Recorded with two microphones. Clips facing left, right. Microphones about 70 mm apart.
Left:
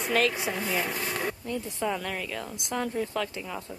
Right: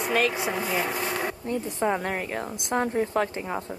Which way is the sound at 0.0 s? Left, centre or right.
Centre.